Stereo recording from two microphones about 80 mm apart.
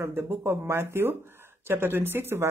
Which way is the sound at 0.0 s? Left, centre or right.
Right.